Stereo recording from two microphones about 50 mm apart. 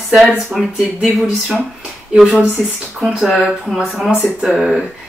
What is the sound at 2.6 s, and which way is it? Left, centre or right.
Speech, centre.